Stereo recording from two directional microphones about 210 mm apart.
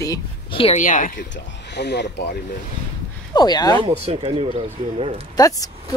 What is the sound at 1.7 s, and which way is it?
Speech, 55° left (ahead or behind).